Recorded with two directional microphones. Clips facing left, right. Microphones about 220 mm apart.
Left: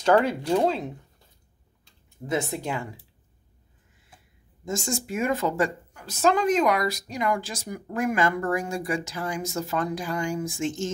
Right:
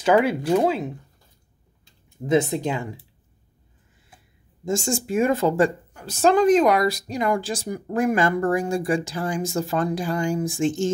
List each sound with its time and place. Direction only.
0.0 s speech: 5° right (ahead or behind)
2.2 s speech: 20° right (ahead or behind)
4.6 s speech: 30° right (ahead or behind)